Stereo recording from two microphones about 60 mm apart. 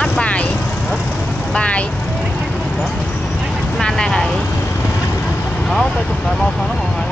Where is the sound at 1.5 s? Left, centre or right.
Left.